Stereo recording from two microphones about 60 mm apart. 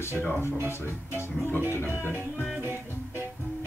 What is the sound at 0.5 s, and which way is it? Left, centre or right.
Speech, right.